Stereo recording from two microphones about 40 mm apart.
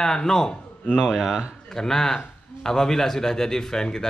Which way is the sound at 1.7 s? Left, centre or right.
Centre.